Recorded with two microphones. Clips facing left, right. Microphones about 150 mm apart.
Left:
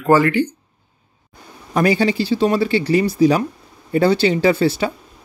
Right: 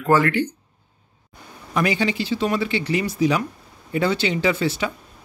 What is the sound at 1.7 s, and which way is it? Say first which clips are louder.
Speech: left 5 dB; 35° left (ahead or behind).